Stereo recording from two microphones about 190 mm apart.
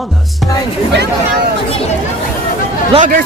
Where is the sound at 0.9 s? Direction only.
60° right (ahead or behind).